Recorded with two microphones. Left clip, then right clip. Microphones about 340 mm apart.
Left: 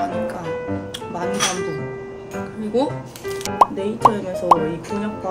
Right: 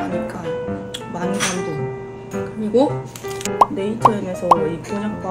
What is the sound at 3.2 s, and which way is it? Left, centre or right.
Speech, centre.